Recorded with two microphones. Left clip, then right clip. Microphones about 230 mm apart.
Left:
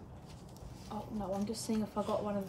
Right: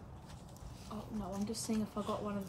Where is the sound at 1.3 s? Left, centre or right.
Centre.